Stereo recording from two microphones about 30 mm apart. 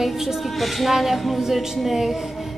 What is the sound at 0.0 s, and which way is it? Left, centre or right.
Music, centre.